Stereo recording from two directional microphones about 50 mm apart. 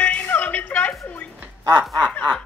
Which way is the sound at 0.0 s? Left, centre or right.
Left.